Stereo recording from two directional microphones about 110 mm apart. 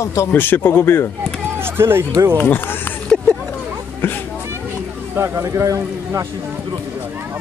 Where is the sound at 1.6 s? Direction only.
20° right (ahead or behind).